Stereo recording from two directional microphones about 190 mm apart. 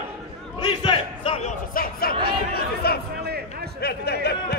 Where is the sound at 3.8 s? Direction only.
55° left (ahead or behind).